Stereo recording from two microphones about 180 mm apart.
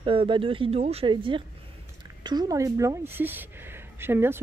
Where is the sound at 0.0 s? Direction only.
30° right (ahead or behind).